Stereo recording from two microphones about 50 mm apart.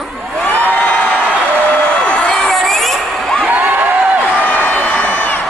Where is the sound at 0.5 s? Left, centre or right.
Left.